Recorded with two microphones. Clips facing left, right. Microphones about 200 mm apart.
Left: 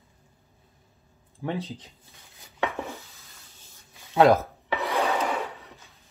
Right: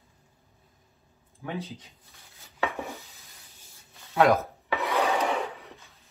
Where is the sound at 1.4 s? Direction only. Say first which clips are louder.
Left 4 dB; 30° left (ahead or behind).